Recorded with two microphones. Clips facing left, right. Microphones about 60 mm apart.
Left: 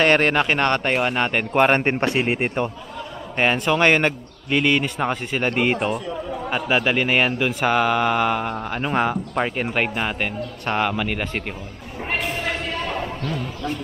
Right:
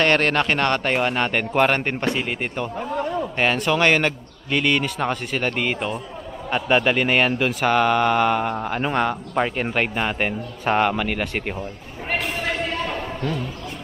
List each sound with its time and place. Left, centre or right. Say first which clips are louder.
0.0 s a man's voice: left 1 dB; centre
2.2 s a man's voice: left 4 dB; centre
12.1 s a sound: even; centre